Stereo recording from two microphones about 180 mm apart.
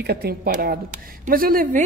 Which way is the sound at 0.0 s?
60° right (ahead or behind).